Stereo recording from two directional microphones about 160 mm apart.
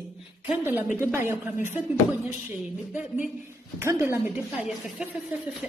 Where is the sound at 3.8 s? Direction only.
15° right (ahead or behind).